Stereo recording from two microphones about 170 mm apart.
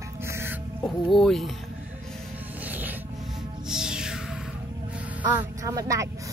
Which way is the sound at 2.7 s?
10° right (ahead or behind).